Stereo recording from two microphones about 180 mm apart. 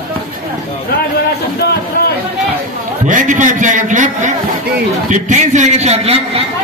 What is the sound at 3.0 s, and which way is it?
A man's voice, 45° right (ahead or behind).